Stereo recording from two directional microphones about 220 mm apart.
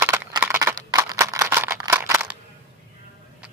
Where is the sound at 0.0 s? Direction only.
10° right (ahead or behind).